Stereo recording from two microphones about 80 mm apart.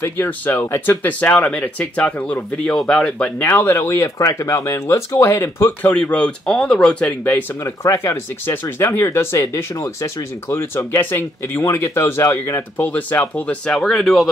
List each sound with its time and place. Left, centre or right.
0.0 s speech: left
3.4 s speech: left
5.8 s speech: left
7.6 s speech: left
13.5 s speech: centre